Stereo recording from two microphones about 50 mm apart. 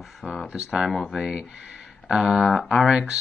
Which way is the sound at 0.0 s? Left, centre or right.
Centre.